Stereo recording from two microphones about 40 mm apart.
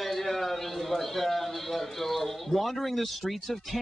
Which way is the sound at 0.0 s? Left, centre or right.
Centre.